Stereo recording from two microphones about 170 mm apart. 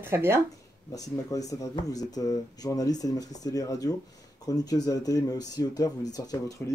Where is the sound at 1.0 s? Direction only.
20° left (ahead or behind).